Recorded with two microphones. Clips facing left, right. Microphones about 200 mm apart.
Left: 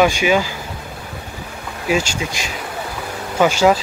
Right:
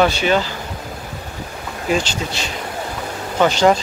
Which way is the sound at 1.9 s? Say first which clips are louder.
Left 1 dB; 10° left (ahead or behind).